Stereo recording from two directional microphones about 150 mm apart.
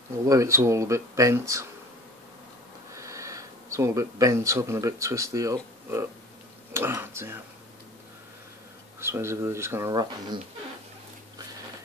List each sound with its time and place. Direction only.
0.2 s speech: 20° right (ahead or behind)
2.9 s speech: 20° right (ahead or behind)
9.0 s speech: 15° right (ahead or behind)